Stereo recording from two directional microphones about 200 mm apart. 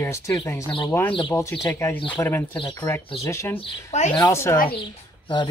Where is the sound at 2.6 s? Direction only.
25° left (ahead or behind).